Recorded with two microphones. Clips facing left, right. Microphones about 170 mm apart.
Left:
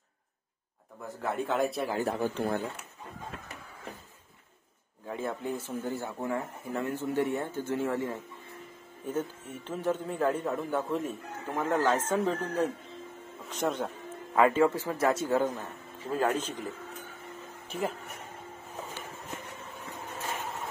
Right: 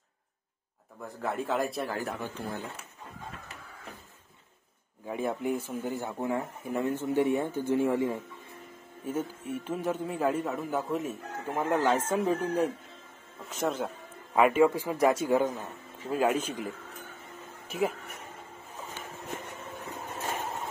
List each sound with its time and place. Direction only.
1.0 s a man's voice: centre (ahead or behind)
2.0 s speech: 30° left (ahead or behind)
2.3 s speech: 60° left (ahead or behind)
5.0 s a man's voice: 15° right (ahead or behind)
14.3 s a man's voice: 15° right (ahead or behind)